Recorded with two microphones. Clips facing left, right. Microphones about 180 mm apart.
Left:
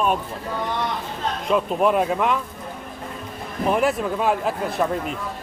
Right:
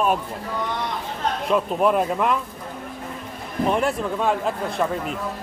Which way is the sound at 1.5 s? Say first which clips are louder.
Left 1 dB; centre (ahead or behind).